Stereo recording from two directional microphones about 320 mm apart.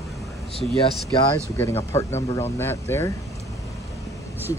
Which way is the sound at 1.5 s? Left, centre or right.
Centre.